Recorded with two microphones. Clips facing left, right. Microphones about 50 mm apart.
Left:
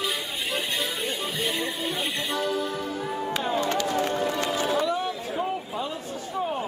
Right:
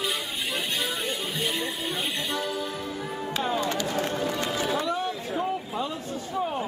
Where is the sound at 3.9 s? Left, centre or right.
Centre.